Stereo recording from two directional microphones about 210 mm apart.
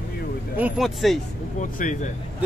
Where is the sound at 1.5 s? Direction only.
35° left (ahead or behind).